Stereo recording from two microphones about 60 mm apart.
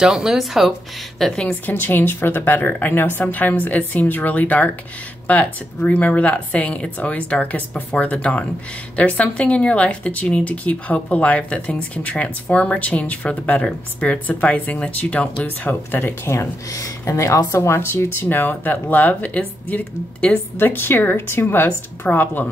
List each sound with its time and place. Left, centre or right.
0.0 s speech: centre
1.5 s a woman's voice: left
13.6 s speech: centre
14.0 s a woman's voice: left
16.3 s speech: left
20.5 s a woman's voice: left